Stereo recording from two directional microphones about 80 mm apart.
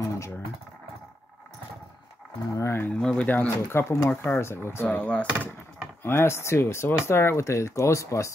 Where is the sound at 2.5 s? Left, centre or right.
Left.